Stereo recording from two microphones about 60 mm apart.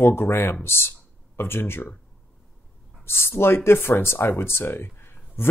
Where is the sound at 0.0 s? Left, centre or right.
Left.